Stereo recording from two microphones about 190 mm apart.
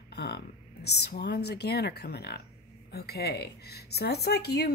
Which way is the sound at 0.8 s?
60° left (ahead or behind).